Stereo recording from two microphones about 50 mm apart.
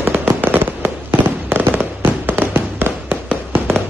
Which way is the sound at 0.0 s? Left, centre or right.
Right.